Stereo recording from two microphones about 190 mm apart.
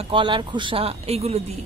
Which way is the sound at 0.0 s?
25° right (ahead or behind).